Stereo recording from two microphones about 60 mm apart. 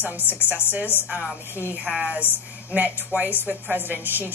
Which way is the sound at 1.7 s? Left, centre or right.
Right.